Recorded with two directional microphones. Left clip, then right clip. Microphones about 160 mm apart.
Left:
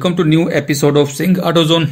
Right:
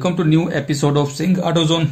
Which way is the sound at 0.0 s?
15° left (ahead or behind).